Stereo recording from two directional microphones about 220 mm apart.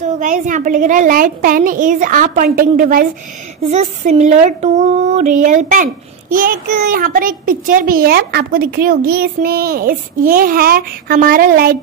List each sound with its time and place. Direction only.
0.0 s a child's voice: 35° right (ahead or behind)